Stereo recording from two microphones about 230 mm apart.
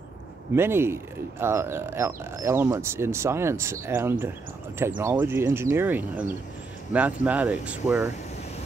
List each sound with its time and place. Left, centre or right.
0.6 s speech: centre